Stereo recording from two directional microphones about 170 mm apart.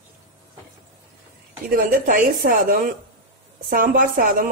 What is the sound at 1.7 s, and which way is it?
A woman's voice, 55° right (ahead or behind).